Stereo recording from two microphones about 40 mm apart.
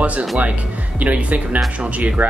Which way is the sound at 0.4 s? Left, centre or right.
Right.